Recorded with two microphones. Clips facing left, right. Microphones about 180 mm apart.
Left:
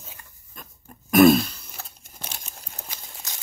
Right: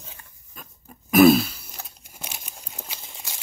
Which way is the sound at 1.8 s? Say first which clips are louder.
Even; 10° right (ahead or behind).